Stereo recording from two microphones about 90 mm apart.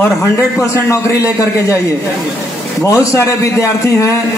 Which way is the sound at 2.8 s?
35° left (ahead or behind).